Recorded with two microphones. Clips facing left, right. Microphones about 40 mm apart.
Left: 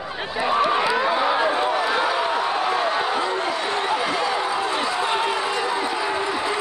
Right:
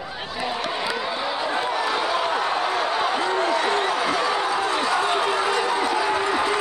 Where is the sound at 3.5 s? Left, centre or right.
Right.